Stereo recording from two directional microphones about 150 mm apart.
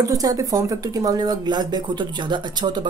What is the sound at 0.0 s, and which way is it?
Speech, 25° right (ahead or behind).